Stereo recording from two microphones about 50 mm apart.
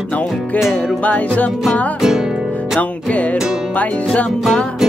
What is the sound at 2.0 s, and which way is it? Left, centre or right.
Music, centre.